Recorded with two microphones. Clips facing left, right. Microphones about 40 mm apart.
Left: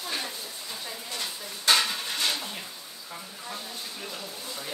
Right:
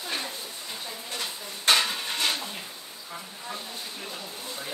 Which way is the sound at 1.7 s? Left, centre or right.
Centre.